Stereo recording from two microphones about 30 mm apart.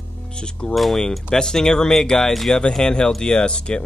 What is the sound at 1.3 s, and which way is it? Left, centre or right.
Speech, left.